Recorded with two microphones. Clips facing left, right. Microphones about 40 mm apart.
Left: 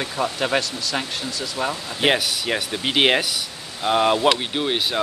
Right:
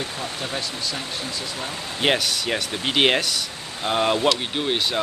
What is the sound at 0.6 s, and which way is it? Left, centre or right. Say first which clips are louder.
Speech: left 4 dB; left.